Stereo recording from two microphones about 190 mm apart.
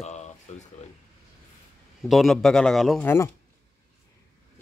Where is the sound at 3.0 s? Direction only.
10° left (ahead or behind).